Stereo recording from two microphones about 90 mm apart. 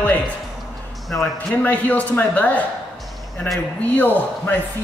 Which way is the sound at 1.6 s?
15° left (ahead or behind).